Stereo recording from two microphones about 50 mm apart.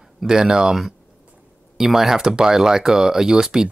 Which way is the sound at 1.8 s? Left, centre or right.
Centre.